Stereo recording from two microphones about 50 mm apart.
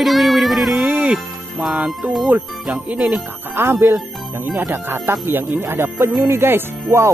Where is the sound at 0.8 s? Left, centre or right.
Right.